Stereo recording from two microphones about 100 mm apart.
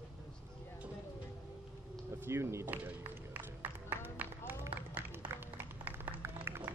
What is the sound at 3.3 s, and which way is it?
Music, 15° right (ahead or behind).